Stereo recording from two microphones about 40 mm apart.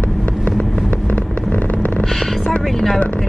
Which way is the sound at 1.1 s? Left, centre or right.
Left.